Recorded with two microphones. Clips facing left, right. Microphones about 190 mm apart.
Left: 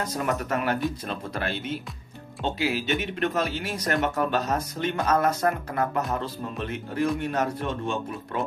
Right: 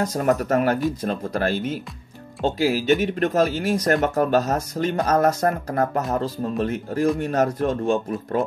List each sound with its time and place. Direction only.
0.0 s speech: 45° right (ahead or behind)